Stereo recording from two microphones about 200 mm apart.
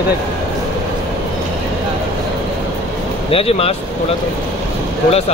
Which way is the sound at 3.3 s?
30° left (ahead or behind).